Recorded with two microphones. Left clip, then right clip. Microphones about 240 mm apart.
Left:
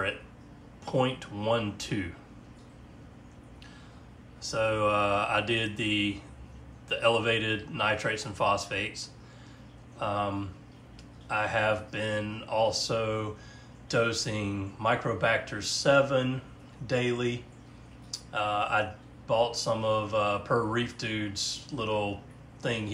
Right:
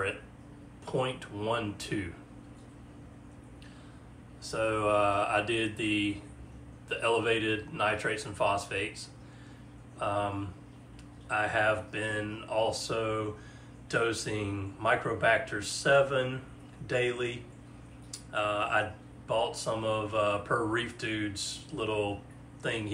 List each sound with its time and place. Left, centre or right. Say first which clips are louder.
0.8 s a man's voice: left 4 dB; left
4.4 s a man's voice: left 3 dB; left